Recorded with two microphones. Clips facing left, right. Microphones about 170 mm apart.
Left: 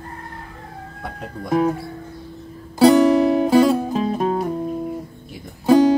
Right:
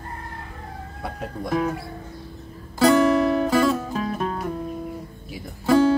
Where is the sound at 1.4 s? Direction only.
35° left (ahead or behind).